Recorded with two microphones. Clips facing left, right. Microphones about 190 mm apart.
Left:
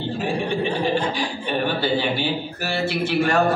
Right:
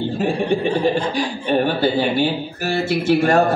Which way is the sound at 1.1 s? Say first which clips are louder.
Right 6 dB; 45° right (ahead or behind).